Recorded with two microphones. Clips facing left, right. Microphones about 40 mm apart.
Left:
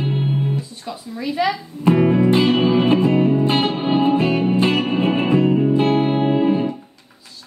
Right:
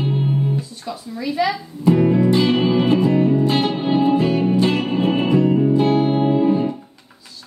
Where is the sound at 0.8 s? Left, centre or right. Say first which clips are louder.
Even; centre.